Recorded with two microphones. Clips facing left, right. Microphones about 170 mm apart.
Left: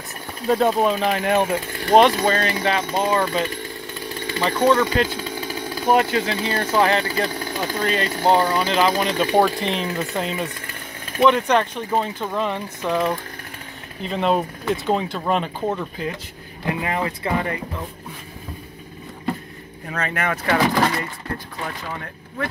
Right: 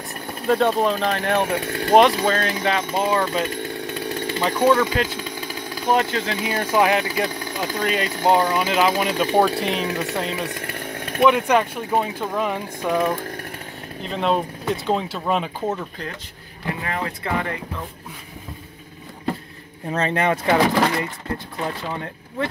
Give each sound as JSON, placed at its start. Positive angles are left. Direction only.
{"t": 0.5, "sound": "speech", "side_deg": 0}
{"t": 1.6, "sound": "speech", "side_deg": -75}
{"t": 2.0, "sound": "speech", "side_deg": 0}
{"t": 6.4, "sound": "speech", "side_deg": -10}
{"t": 7.1, "sound": "speech", "side_deg": 0}
{"t": 10.5, "sound": "chainsaw", "side_deg": -65}
{"t": 11.1, "sound": "speech", "side_deg": -5}
{"t": 14.0, "sound": "speech", "side_deg": 0}
{"t": 16.6, "sound": "speech", "side_deg": 15}
{"t": 19.9, "sound": "speech", "side_deg": -25}